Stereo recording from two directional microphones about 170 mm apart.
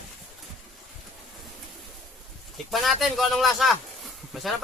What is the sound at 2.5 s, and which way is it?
Speech, centre (ahead or behind).